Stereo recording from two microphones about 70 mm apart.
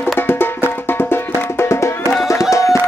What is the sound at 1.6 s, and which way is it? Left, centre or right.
Music, left.